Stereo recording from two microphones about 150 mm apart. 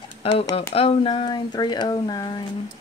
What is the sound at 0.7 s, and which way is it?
Speech, 40° left (ahead or behind).